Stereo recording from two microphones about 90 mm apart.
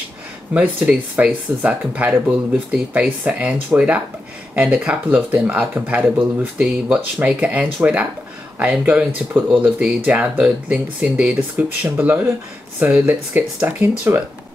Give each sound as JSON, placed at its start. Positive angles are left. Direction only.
{"t": 0.5, "sound": "speech", "side_deg": -15}